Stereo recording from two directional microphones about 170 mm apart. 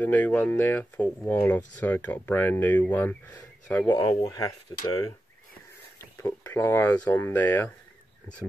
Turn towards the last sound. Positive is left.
turn(degrees=10)  # may be behind; listen again after turning